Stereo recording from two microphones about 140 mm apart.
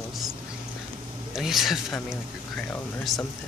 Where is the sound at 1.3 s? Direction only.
Centre (ahead or behind).